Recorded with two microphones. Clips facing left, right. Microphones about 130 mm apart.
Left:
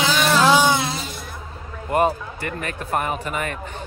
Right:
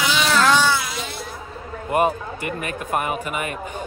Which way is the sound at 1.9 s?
15° right (ahead or behind).